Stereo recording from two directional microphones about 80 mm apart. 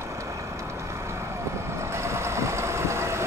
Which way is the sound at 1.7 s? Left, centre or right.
Right.